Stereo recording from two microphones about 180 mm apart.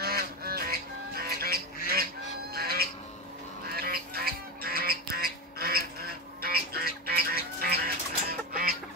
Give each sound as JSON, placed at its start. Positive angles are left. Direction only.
{"t": 0.0, "sound": "music", "side_deg": -55}
{"t": 2.5, "sound": "cat", "side_deg": -55}
{"t": 3.7, "sound": "music", "side_deg": -55}